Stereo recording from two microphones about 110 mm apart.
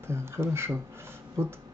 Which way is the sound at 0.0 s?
25° right (ahead or behind).